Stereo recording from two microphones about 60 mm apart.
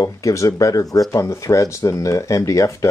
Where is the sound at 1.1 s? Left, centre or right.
Left.